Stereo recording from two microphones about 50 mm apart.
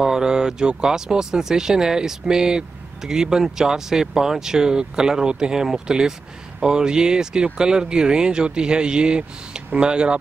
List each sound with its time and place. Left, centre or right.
0.0 s speech: centre